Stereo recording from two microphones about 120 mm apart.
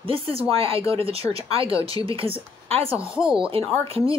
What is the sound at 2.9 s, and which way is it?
Speech, 10° right (ahead or behind).